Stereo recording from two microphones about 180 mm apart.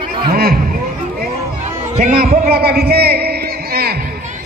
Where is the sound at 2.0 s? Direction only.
55° right (ahead or behind).